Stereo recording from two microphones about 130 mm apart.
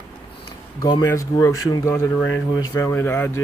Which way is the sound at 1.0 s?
25° left (ahead or behind).